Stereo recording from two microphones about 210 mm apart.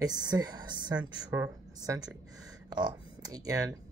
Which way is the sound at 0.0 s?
20° right (ahead or behind).